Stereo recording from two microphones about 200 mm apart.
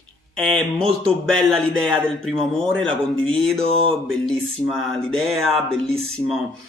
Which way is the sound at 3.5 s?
30° right (ahead or behind).